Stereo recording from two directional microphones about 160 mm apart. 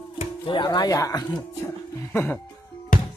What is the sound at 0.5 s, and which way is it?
Speech, 30° left (ahead or behind).